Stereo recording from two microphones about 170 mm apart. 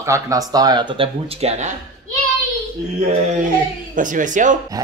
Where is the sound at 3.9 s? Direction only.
50° right (ahead or behind).